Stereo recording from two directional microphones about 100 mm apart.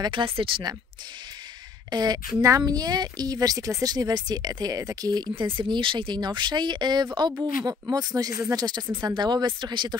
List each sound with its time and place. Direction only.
0.0 s speech: 60° right (ahead or behind)
1.9 s speech: 45° right (ahead or behind)
5.3 s speech: 55° right (ahead or behind)